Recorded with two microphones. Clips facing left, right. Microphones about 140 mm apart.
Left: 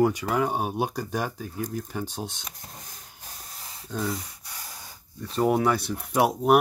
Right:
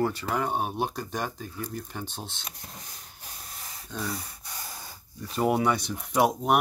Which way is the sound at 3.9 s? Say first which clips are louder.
Left 5 dB; 10° left (ahead or behind).